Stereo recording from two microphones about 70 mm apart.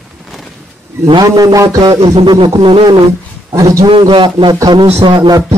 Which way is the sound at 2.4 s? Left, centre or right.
Right.